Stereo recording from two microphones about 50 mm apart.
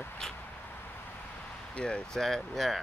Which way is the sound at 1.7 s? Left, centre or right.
Centre.